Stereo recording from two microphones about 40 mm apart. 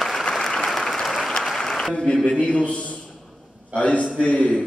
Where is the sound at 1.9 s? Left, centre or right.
Left.